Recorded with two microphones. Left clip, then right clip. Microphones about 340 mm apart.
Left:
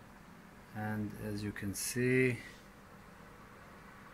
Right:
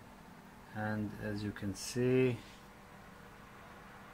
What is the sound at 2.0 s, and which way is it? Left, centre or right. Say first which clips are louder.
Speech: even; right.